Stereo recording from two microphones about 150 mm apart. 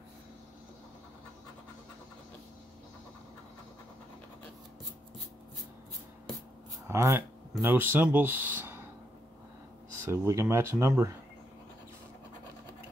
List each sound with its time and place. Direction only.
6.9 s speech: 20° right (ahead or behind)
9.9 s speech: 20° right (ahead or behind)